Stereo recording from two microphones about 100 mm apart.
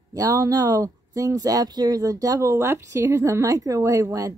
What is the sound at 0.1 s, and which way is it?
Speech, 35° right (ahead or behind).